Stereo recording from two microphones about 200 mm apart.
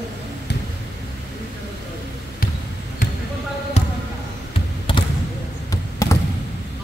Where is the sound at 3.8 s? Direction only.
35° left (ahead or behind); by 6.1 s 15° left (ahead or behind).